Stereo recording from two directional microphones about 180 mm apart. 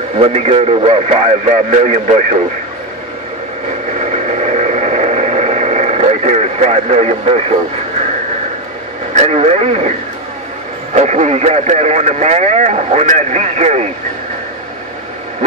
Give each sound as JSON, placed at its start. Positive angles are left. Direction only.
{"t": 0.2, "sound": "speech", "side_deg": -35}
{"t": 4.0, "sound": "radio", "side_deg": -40}
{"t": 9.1, "sound": "speech", "side_deg": -35}
{"t": 11.0, "sound": "speech", "side_deg": -40}